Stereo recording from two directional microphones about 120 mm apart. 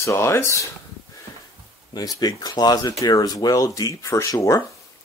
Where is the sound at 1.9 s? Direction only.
30° left (ahead or behind).